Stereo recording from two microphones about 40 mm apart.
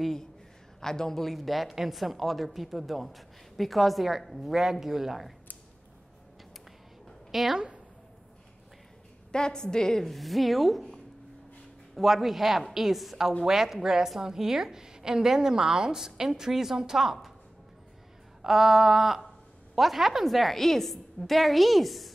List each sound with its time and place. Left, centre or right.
0.0 s a woman's voice: centre
7.2 s a sound: centre
7.5 s a woman's voice: right
9.3 s a woman's voice: centre
10.1 s a woman's voice: centre
18.4 s a woman's voice: centre